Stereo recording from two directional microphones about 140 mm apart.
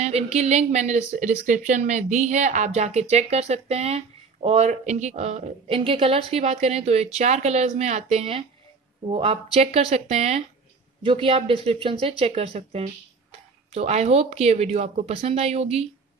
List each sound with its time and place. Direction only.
0.0 s speech: 50° right (ahead or behind)